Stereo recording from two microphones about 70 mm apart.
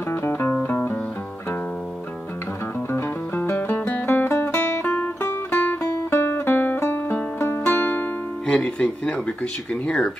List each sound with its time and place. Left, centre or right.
0.1 s music: left
2.9 s music: left
4.8 s music: left
7.7 s music: left
8.5 s speech: centre